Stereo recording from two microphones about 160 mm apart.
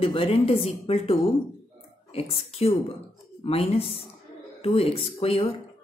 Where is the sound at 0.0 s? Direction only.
35° left (ahead or behind).